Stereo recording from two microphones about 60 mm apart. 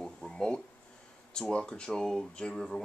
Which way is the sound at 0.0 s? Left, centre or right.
Centre.